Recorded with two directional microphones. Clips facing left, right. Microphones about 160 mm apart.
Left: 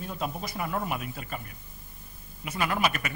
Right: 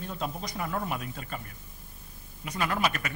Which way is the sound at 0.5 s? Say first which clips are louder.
Left 1 dB; 15° left (ahead or behind).